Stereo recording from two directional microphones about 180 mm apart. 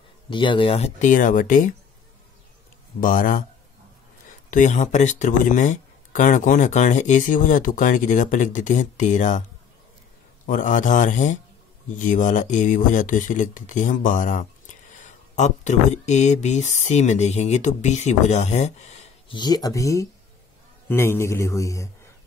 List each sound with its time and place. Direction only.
0.3 s speech: 25° left (ahead or behind); by 1.7 s 45° left (ahead or behind)
3.0 s speech: 50° left (ahead or behind)
4.5 s speech: 45° left (ahead or behind)
10.4 s speech: 45° left (ahead or behind)
19.3 s a man's voice: 20° left (ahead or behind)